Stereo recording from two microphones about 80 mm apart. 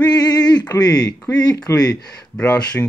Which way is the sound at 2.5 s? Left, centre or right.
Centre.